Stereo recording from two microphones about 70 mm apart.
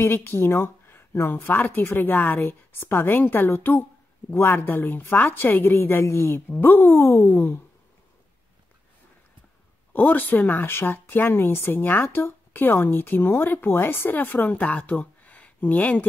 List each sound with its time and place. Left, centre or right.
0.0 s speech: left
9.9 s speech: left